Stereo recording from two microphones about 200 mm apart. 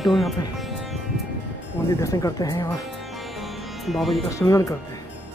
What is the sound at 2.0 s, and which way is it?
Speech, 15° left (ahead or behind).